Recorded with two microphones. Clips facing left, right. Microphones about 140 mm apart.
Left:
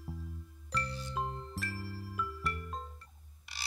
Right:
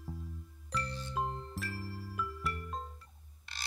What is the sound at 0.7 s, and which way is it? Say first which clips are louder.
Music: even; centre (ahead or behind).